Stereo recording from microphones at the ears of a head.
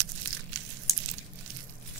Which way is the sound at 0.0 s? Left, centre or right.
Right.